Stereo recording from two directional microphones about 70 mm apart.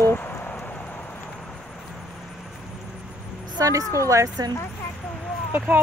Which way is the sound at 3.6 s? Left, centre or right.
Right.